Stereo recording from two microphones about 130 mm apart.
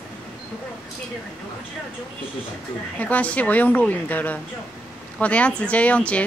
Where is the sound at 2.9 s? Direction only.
10° left (ahead or behind).